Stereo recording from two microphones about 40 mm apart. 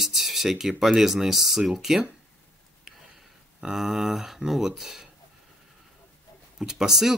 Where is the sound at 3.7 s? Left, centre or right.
Centre.